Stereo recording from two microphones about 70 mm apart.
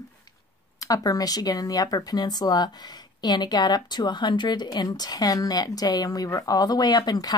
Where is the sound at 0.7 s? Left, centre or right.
Left.